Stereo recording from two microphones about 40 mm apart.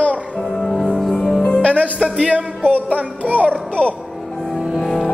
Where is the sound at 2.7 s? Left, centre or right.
Right.